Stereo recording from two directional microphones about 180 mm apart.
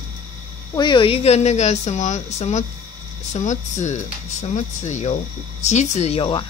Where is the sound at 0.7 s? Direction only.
25° left (ahead or behind).